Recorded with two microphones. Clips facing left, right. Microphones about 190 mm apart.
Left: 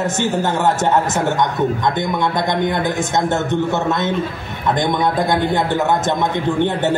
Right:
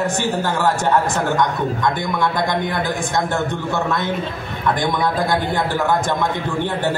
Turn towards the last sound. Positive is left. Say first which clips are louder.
# left 4 dB
turn(degrees=20)  # may be behind; listen again after turning